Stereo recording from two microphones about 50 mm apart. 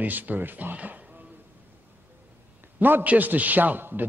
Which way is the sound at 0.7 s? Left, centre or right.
Right.